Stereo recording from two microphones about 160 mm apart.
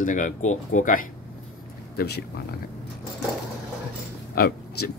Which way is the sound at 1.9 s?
90° left.